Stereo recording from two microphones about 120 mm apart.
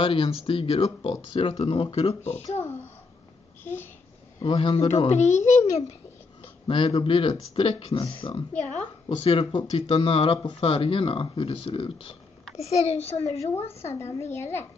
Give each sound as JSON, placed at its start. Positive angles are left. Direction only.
{"t": 0.0, "sound": "speech", "side_deg": 50}
{"t": 4.4, "sound": "a child's voice", "side_deg": 45}
{"t": 6.4, "sound": "speech", "side_deg": 50}
{"t": 8.5, "sound": "a woman's voice", "side_deg": 10}
{"t": 9.2, "sound": "speech", "side_deg": 50}
{"t": 12.5, "sound": "a child's voice", "side_deg": 65}
{"t": 14.3, "sound": "a child's voice", "side_deg": 20}